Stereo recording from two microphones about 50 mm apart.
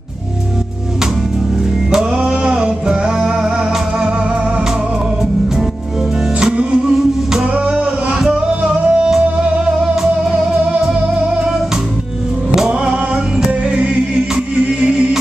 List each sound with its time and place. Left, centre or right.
1.9 s music: centre
6.5 s music: right
8.1 s music: centre
11.1 s music: right
13.5 s music: right